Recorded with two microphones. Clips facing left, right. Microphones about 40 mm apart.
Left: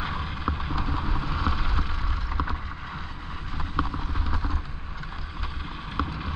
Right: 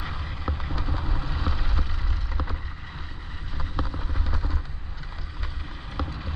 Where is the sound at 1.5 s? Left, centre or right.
Left.